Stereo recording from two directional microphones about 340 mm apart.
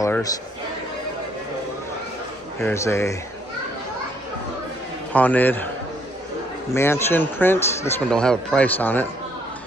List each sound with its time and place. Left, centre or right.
0.0 s music: centre
2.6 s speech: centre
5.1 s speech: centre
6.7 s speech: centre